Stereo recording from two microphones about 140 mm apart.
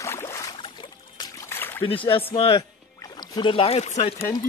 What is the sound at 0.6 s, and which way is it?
Boat, 35° left (ahead or behind).